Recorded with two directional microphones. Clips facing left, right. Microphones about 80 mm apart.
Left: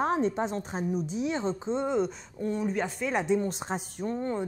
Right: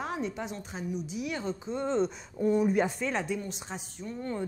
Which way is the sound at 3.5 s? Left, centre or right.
Left.